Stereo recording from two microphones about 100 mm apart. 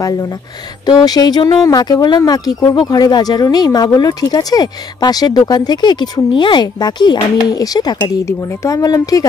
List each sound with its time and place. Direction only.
0.0 s speech: 40° left (ahead or behind)